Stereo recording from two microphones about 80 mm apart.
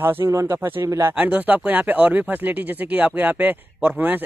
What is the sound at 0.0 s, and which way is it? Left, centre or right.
Speech, right.